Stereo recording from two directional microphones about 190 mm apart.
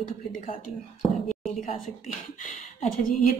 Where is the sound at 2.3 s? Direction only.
40° left (ahead or behind).